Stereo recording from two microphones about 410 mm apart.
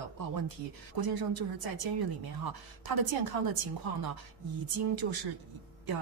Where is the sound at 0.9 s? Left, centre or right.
Right.